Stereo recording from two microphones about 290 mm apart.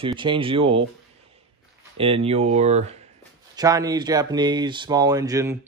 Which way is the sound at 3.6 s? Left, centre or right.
Centre.